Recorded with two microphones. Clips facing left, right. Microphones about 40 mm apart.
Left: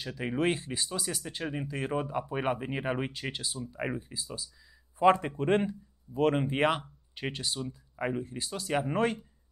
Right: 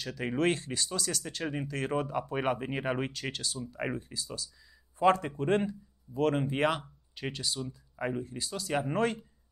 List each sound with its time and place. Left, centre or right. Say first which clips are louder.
0.0 s speech: even; centre
1.4 s speech: even; centre
3.6 s speech: left 1 dB; centre
4.9 s a man's voice: left 2 dB; left
7.9 s a sound: left 1 dB; centre
8.2 s speech: even; left
8.7 s speech: left 1 dB; centre